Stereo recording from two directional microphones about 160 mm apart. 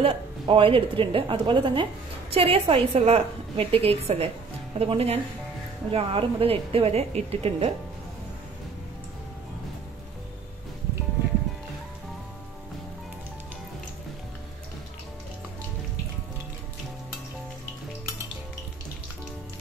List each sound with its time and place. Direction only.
0.0 s a woman's voice: 35° right (ahead or behind)